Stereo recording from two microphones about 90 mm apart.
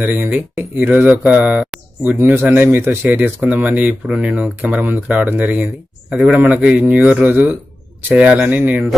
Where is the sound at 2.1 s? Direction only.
25° right (ahead or behind).